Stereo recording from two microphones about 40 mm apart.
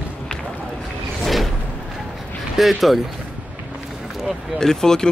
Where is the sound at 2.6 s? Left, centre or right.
Centre.